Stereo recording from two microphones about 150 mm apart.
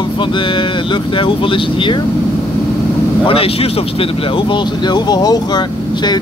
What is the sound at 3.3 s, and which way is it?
A man's voice, 40° left (ahead or behind).